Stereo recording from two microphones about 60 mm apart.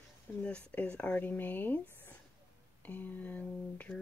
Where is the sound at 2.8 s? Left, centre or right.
Left.